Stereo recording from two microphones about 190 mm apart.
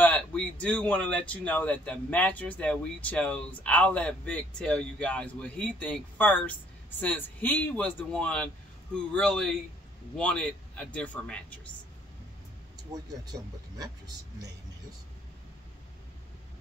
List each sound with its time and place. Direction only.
0.0 s a man's voice: 5° left (ahead or behind)
12.9 s speech: 20° right (ahead or behind)